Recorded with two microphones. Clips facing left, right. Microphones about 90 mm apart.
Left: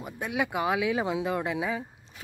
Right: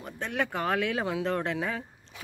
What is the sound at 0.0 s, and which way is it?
Speech, 10° left (ahead or behind).